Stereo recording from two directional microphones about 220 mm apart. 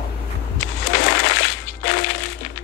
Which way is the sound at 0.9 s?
55° left (ahead or behind).